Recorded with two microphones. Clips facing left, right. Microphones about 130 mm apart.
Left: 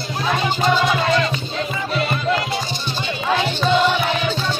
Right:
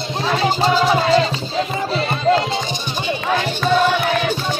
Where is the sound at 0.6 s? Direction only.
30° right (ahead or behind).